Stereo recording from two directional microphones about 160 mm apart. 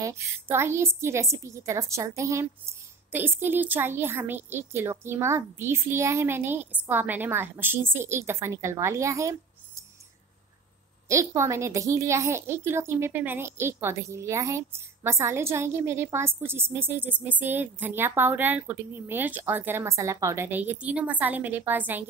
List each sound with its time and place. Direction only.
0.0 s a woman's voice: 20° right (ahead or behind)
11.1 s a woman's voice: 20° right (ahead or behind)